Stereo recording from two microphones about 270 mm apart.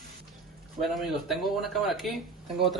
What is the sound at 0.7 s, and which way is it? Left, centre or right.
Speech, centre.